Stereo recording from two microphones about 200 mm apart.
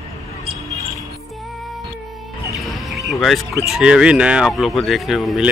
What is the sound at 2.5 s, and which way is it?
Music, centre (ahead or behind).